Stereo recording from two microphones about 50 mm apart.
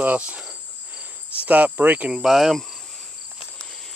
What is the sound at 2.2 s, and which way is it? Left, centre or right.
Speech, centre.